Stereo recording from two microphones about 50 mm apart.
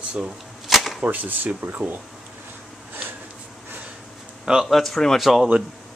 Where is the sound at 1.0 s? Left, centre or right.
Right.